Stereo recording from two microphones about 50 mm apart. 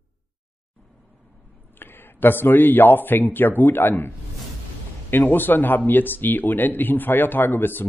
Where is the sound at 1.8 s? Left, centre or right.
Left.